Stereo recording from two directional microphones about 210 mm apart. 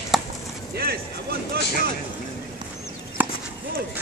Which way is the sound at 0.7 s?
45° right (ahead or behind).